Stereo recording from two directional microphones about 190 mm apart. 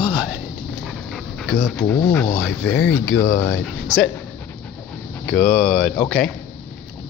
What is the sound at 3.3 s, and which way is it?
Speech, 60° left (ahead or behind).